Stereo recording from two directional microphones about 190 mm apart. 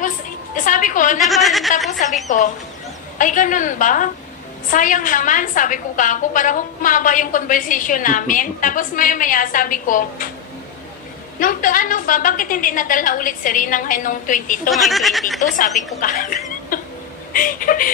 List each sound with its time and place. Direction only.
0.7 s a sound: 45° left (ahead or behind)
1.2 s speech: centre (ahead or behind)
1.9 s a woman's voice: 40° left (ahead or behind)
11.3 s a woman's voice: 45° left (ahead or behind)
14.7 s speech: centre (ahead or behind)
16.0 s chuckle: 45° left (ahead or behind)
17.3 s a woman's voice: 45° left (ahead or behind)